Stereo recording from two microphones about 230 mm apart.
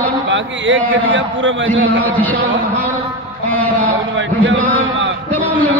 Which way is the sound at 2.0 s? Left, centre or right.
Centre.